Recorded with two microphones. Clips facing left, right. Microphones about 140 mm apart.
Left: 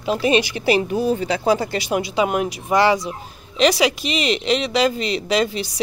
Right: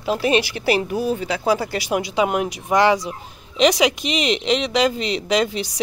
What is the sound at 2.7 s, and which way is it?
Speech, 10° left (ahead or behind).